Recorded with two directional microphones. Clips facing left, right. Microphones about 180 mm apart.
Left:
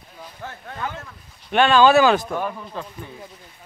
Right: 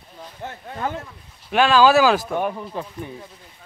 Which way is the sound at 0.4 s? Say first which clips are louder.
Right 2 dB; 20° right (ahead or behind).